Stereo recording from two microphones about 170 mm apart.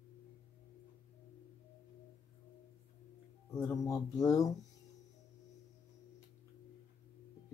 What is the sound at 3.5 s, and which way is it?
Speech, 20° left (ahead or behind).